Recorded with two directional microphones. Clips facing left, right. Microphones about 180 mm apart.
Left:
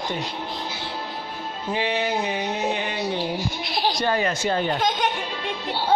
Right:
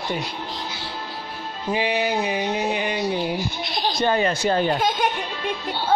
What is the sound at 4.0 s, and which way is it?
Speech, 25° right (ahead or behind).